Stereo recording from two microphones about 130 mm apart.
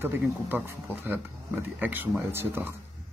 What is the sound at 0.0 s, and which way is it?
Speech, 15° right (ahead or behind).